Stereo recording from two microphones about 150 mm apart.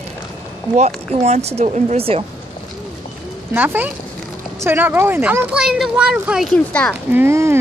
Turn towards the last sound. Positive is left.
turn(degrees=-15)  # may be behind; listen again after turning